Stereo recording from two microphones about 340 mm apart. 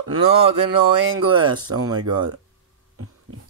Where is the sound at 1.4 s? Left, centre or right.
Right.